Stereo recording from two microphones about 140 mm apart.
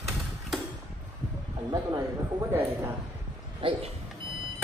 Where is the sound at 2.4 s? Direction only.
15° right (ahead or behind).